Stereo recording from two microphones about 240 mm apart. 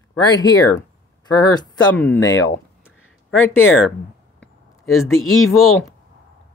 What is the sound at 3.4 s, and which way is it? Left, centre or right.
Speech, centre.